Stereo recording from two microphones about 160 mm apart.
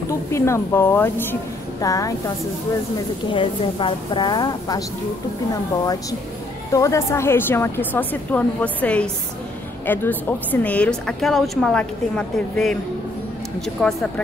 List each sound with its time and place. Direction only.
0.3 s a woman's voice: 15° left (ahead or behind)
3.3 s a woman's voice: 30° left (ahead or behind)
6.7 s a woman's voice: 20° left (ahead or behind); by 12.7 s 5° left (ahead or behind)
13.7 s a woman's voice: 5° left (ahead or behind)